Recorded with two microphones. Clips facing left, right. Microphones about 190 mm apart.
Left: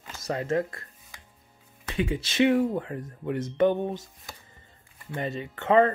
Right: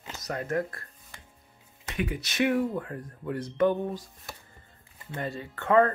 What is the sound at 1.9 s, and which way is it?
Speech, 25° left (ahead or behind).